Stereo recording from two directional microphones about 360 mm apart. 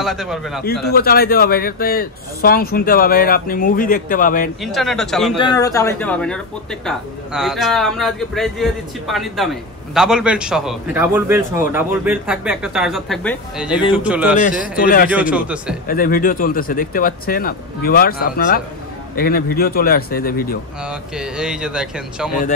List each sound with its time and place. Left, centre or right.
0.0 s speech: centre
0.9 s speech: left
4.6 s speech: centre
14.4 s speech: left
15.0 s speech: centre
15.9 s speech: left
20.8 s speech: centre